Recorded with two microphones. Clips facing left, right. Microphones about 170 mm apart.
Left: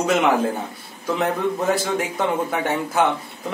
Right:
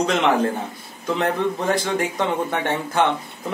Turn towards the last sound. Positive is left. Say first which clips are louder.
# even
turn(degrees=5)  # may be behind; listen again after turning